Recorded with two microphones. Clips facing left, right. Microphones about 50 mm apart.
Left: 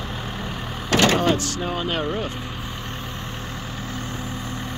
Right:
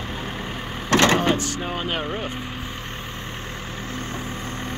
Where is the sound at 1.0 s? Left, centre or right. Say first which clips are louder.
Even; right.